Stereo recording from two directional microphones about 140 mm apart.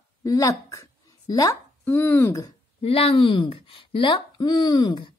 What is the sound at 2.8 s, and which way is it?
Speech, 45° left (ahead or behind).